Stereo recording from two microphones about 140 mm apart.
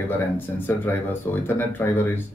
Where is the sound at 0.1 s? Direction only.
15° left (ahead or behind).